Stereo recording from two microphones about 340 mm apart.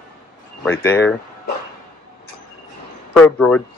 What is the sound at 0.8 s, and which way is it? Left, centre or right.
Speech, centre.